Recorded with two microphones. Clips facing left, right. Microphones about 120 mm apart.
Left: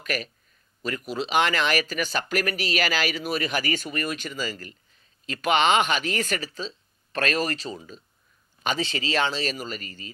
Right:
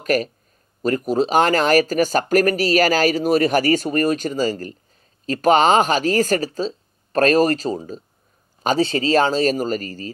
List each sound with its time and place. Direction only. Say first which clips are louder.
0.0 s speech: right 11 dB; 40° right (ahead or behind)